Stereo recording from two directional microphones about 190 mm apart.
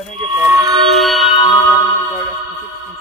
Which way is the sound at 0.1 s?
30° right (ahead or behind).